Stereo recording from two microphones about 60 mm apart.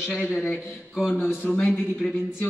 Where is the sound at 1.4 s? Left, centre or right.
Left.